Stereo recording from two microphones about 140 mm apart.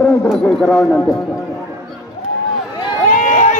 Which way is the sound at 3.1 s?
65° left (ahead or behind).